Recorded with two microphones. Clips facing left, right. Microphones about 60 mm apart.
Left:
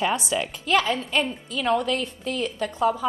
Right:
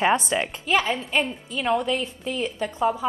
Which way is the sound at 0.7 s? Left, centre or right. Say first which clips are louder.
Left 1 dB; centre.